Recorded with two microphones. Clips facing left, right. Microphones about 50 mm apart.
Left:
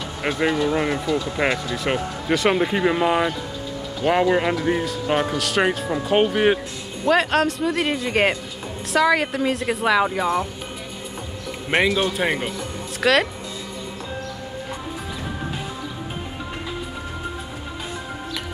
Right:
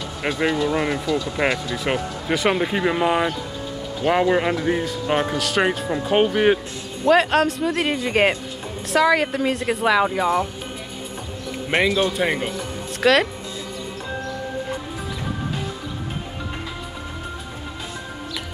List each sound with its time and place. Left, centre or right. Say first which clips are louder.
0.7 s speech: even; centre
1.0 s speech: even; left
1.3 s speech: even; centre
11.7 s a man's voice: even; centre